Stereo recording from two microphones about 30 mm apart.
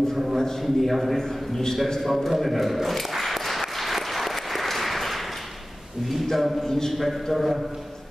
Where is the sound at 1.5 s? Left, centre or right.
Centre.